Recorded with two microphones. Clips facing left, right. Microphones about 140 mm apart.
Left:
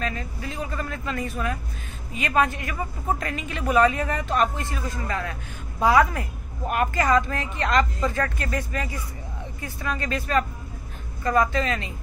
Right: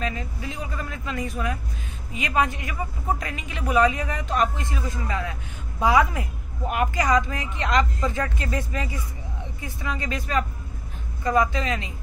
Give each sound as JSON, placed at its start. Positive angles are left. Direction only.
{"t": 0.0, "sound": "a man's voice", "side_deg": -15}